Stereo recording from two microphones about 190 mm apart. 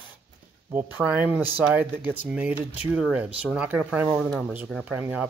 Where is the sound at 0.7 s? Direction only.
10° right (ahead or behind).